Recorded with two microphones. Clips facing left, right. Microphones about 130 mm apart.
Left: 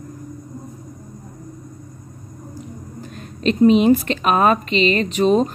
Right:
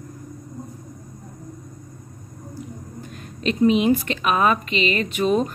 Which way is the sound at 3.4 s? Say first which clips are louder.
Left 5 dB; 35° left (ahead or behind).